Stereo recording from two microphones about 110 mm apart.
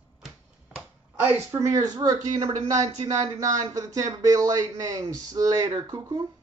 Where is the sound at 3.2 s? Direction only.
35° right (ahead or behind).